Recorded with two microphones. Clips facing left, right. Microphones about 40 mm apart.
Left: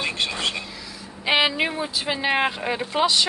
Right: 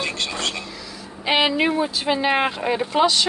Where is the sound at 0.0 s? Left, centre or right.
Centre.